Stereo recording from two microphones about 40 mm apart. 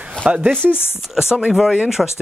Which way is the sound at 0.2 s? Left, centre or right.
Right.